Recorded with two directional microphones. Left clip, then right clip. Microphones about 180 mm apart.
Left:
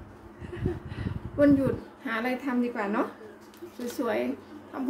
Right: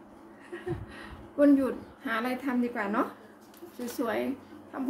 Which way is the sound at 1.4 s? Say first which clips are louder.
Left 1 dB; 10° right (ahead or behind).